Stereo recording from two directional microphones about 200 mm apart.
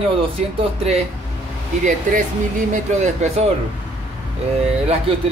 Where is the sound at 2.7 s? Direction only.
35° right (ahead or behind).